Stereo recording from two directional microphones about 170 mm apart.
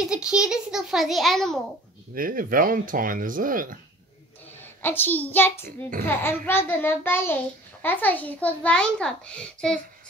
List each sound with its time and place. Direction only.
0.0 s a child's voice: 5° right (ahead or behind)
2.1 s speech: 55° right (ahead or behind)
4.6 s a child's voice: 10° left (ahead or behind)